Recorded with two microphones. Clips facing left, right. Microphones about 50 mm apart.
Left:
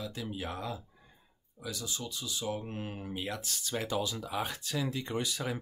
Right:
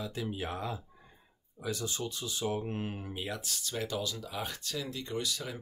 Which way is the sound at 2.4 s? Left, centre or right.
Right.